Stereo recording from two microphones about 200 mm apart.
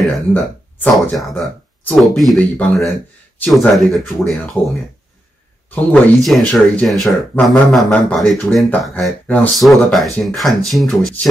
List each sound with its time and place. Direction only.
0.3 s speech: 5° left (ahead or behind)
5.8 s speech: 5° left (ahead or behind)